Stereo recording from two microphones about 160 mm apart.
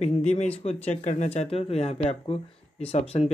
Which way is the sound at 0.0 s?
45° left (ahead or behind).